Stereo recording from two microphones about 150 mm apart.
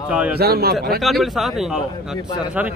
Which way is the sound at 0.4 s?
90° right.